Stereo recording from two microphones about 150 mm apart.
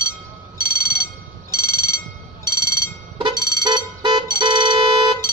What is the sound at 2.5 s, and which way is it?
Alarm, 20° left (ahead or behind).